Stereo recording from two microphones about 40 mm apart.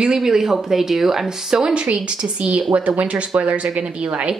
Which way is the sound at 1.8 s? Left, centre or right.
Right.